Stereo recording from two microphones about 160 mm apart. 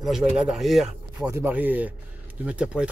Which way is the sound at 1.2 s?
15° right (ahead or behind).